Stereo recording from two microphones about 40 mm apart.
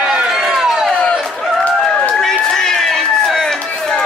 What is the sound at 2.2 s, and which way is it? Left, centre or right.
Run, centre.